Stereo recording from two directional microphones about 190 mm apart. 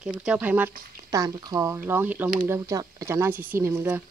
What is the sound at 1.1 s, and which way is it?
Speech, 20° right (ahead or behind).